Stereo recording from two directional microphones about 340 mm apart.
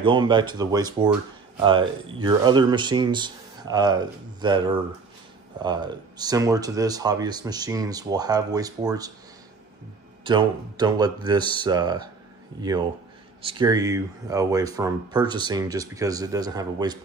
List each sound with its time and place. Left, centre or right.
0.0 s speech: centre
10.2 s speech: centre